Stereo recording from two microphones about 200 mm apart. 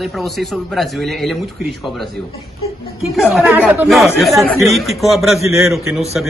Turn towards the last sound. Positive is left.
turn(degrees=0)  # may be behind; listen again after turning